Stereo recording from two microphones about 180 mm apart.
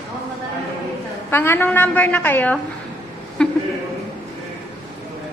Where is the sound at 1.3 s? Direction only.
10° left (ahead or behind).